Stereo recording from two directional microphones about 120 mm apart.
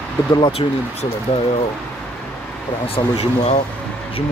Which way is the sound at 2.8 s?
50° left (ahead or behind).